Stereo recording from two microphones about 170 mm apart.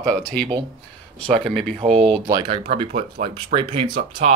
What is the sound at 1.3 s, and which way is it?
Speech, 30° right (ahead or behind).